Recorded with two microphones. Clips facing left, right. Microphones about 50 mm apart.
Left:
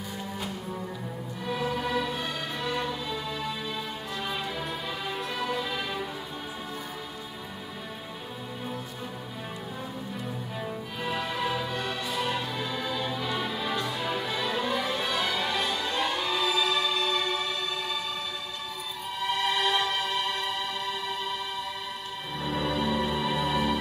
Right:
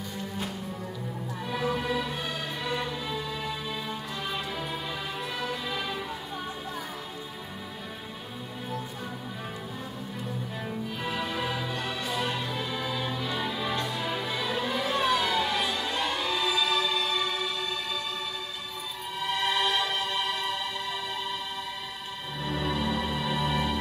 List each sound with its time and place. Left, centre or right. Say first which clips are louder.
1.4 s music: even; centre
5.4 s music: left 2 dB; centre
11.0 s music: left 2 dB; centre
19.4 s music: even; centre
22.4 s music: left 1 dB; centre